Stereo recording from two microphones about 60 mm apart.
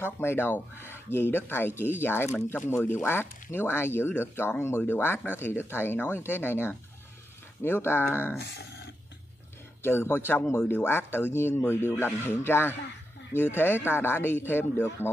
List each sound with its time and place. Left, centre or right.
0.0 s speech: left
9.8 s speech: left